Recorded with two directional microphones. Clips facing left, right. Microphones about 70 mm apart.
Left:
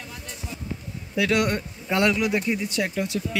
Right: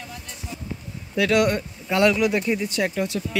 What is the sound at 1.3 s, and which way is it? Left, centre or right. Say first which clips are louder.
Speech: right 4 dB; left.